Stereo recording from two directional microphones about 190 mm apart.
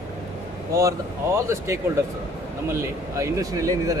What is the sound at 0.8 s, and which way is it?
Speech, 15° right (ahead or behind).